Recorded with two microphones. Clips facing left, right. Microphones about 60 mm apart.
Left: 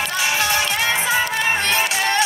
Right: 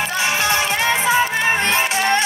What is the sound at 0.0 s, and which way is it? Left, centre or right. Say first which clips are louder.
Music: right 1 dB; right.